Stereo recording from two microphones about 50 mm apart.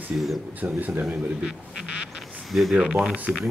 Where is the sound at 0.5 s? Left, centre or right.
Right.